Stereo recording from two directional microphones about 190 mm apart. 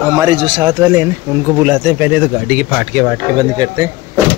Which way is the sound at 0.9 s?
10° right (ahead or behind).